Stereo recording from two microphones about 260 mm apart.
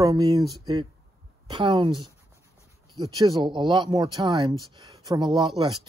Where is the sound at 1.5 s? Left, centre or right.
Centre.